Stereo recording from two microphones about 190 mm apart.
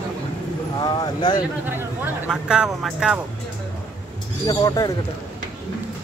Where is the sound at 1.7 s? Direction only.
10° right (ahead or behind).